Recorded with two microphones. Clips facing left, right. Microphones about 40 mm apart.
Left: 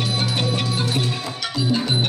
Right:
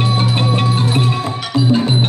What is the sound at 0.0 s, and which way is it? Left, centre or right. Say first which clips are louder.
Music: right 6 dB; right.